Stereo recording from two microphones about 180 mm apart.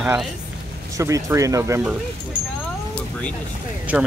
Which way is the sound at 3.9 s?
10° right (ahead or behind).